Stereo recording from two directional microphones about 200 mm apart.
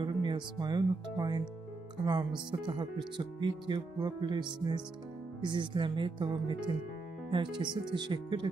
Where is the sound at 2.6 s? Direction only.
25° right (ahead or behind).